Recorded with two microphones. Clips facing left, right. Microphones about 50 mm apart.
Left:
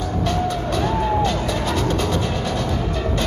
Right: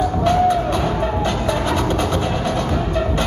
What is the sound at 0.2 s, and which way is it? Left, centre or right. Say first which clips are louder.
Vehicle: right 7 dB; centre.